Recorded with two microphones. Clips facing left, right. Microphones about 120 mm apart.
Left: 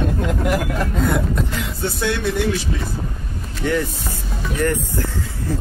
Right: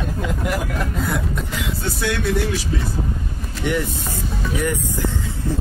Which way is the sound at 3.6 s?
15° right (ahead or behind).